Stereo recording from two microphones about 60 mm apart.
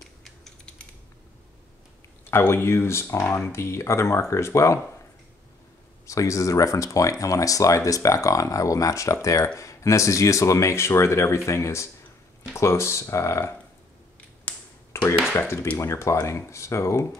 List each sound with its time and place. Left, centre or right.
0.0 s mechanisms: centre
2.3 s speech: left
6.0 s speech: left
14.5 s finger snapping: left
14.9 s a sound: left
15.3 s speech: left